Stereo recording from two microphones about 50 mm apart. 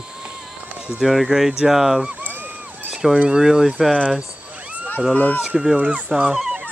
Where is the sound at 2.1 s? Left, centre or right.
Right.